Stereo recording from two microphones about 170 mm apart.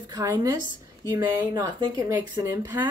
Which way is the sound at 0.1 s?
20° right (ahead or behind).